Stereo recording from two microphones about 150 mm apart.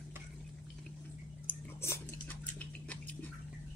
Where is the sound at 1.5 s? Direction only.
15° left (ahead or behind).